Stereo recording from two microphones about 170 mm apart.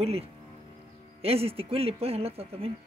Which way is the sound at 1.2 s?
35° right (ahead or behind).